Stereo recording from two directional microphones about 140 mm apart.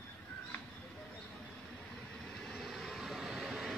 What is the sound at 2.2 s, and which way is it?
Vehicle, 5° left (ahead or behind).